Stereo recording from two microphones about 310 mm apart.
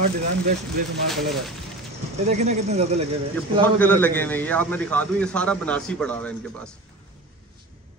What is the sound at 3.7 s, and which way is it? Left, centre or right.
A man's voice, centre.